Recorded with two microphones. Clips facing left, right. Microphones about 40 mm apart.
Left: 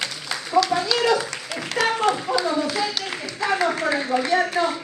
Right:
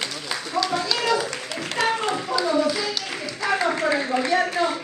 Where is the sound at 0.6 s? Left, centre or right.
Centre.